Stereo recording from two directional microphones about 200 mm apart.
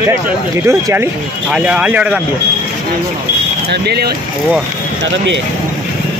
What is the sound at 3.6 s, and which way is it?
Speech, 55° right (ahead or behind).